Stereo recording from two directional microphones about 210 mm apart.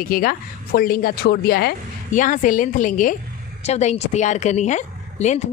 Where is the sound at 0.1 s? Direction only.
45° left (ahead or behind).